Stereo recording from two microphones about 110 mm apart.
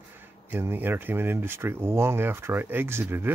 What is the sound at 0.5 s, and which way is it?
Speech, 20° right (ahead or behind).